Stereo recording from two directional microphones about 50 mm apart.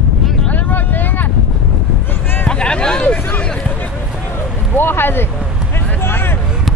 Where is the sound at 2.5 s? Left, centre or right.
Centre.